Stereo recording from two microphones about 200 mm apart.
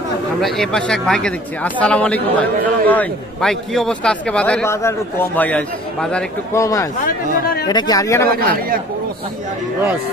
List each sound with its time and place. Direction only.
0.4 s a man's voice: 5° left (ahead or behind)
6.6 s speech: 15° left (ahead or behind)
7.1 s speech: 50° left (ahead or behind)
7.6 s speech: 20° left (ahead or behind)